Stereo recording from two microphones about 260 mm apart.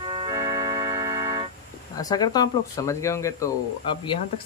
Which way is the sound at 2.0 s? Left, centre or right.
Centre.